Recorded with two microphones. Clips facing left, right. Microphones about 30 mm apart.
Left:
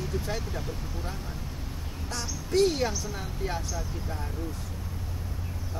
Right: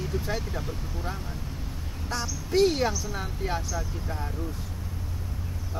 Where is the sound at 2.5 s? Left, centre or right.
Centre.